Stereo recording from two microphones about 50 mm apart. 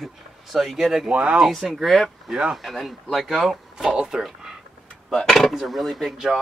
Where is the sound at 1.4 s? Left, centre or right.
Centre.